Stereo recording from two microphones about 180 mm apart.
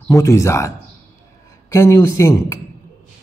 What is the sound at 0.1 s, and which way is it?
Speech, 15° left (ahead or behind).